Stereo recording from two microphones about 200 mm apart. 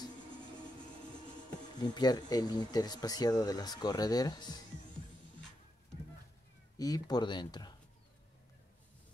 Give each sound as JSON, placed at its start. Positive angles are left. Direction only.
{"t": 1.5, "sound": "speech", "side_deg": 20}
{"t": 6.8, "sound": "speech", "side_deg": 20}